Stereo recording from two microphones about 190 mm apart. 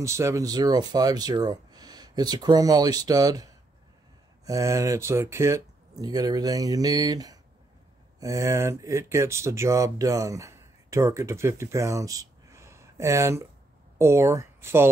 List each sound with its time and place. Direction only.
0.0 s speech: 15° right (ahead or behind)
4.5 s speech: 15° right (ahead or behind)